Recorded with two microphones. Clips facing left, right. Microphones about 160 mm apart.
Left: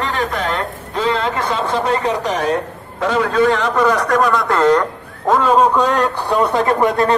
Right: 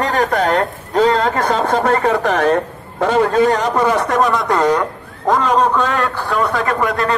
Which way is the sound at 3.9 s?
25° right (ahead or behind).